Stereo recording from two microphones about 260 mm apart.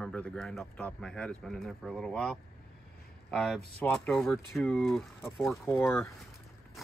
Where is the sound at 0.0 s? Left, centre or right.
Centre.